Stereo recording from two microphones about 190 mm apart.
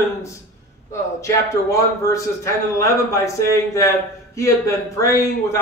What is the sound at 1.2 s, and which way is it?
A man's voice, 15° left (ahead or behind).